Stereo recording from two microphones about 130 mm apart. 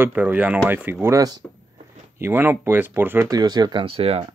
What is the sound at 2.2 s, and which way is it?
Speech, 15° right (ahead or behind).